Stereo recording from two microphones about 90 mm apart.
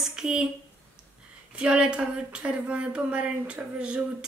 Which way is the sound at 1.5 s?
10° right (ahead or behind).